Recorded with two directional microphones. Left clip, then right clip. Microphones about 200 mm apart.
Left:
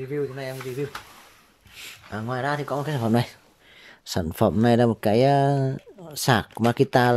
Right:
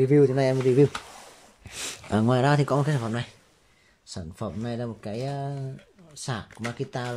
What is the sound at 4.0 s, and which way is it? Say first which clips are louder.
Speech: left 13 dB; 40° left (ahead or behind).